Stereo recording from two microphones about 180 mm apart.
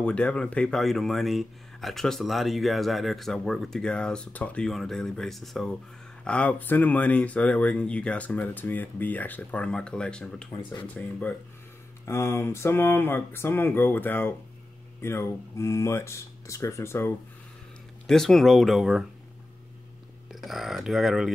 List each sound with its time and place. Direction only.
0.0 s speech: 5° left (ahead or behind)
18.0 s speech: centre (ahead or behind)
20.3 s speech: centre (ahead or behind)